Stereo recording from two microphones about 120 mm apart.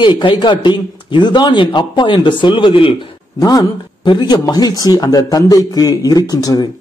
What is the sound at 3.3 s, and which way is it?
A man's voice, 35° left (ahead or behind).